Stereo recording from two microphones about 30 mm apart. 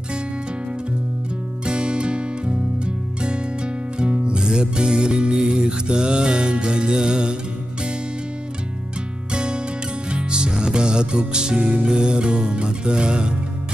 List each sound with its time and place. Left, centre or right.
1.7 s music: right
9.3 s music: right